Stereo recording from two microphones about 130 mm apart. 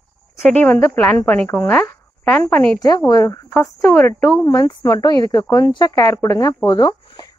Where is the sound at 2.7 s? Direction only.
30° left (ahead or behind).